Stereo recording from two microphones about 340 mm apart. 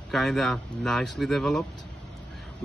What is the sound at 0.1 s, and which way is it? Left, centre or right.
Speech, centre.